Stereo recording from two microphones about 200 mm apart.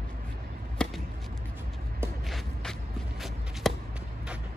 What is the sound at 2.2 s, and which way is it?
Shuffle, centre (ahead or behind).